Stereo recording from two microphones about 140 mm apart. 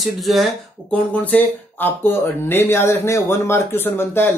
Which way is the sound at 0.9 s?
10° left (ahead or behind).